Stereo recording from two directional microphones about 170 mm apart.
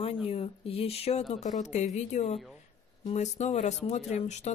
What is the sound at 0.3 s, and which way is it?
Speech, 35° left (ahead or behind).